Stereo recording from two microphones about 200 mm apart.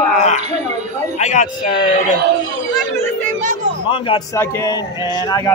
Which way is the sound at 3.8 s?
25° left (ahead or behind).